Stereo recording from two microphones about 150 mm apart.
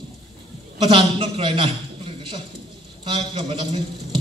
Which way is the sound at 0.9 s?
35° right (ahead or behind).